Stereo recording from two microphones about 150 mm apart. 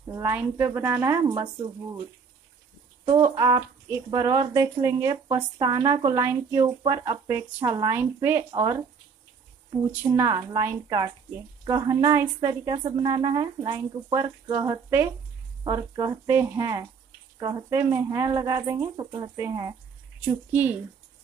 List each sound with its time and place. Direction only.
0.1 s speech: 15° right (ahead or behind)
3.1 s speech: 25° right (ahead or behind)
8.5 s speech: 25° right (ahead or behind)
9.8 s speech: 15° right (ahead or behind)